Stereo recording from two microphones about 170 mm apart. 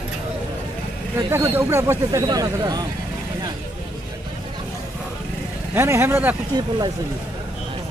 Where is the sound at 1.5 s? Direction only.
15° right (ahead or behind).